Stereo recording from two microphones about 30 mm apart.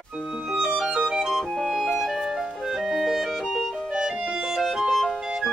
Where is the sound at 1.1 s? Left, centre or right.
Centre.